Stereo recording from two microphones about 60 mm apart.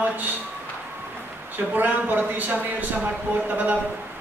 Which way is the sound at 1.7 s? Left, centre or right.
Right.